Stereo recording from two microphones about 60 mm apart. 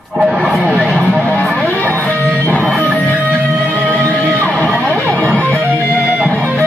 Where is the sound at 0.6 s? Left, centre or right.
Right.